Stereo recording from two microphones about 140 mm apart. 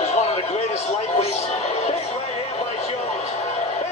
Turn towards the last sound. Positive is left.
turn(degrees=50)  # may be behind; listen again after turning